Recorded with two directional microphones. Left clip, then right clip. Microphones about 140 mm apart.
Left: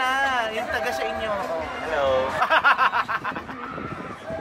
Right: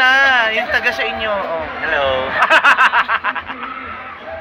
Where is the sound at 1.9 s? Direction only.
30° left (ahead or behind).